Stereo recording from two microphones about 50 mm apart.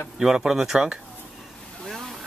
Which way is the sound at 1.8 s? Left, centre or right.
Centre.